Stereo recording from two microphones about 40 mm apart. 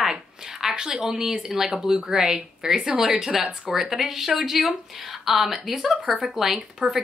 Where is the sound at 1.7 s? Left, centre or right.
Centre.